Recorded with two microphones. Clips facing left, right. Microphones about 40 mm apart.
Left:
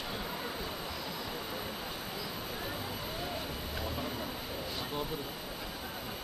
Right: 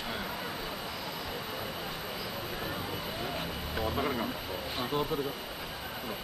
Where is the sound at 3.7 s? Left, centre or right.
Right.